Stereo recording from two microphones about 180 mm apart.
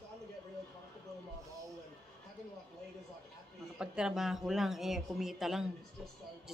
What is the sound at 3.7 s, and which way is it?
A woman's voice, 5° right (ahead or behind).